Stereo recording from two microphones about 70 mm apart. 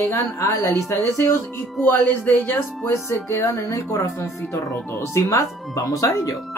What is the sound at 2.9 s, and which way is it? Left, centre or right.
Speech, left.